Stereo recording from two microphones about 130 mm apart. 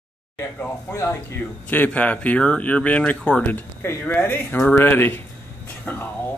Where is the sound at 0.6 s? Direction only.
15° left (ahead or behind).